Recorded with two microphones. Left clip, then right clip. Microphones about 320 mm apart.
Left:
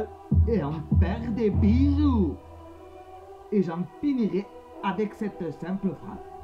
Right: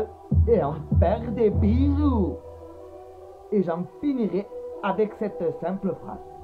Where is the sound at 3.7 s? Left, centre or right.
Centre.